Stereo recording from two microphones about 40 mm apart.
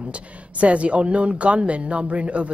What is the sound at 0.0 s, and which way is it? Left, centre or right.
Speech, right.